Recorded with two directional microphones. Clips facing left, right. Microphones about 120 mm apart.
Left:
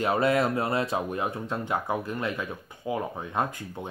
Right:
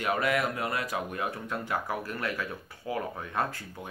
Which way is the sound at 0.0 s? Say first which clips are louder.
Left 4 dB; 30° left (ahead or behind).